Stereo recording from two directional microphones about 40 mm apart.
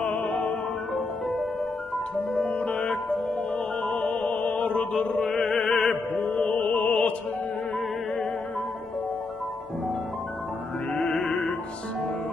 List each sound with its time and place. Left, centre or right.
0.3 s music: centre
2.5 s music: left
4.6 s mantra: left
5.6 s music: centre
6.4 s music: left
10.9 s music: centre